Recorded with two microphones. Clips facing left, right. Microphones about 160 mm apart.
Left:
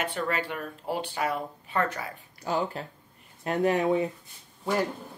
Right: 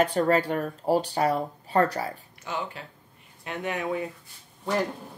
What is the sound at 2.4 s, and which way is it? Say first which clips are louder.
Speech: left 5 dB; 40° left (ahead or behind).